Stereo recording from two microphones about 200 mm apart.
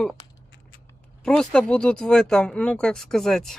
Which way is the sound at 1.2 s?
5° left (ahead or behind).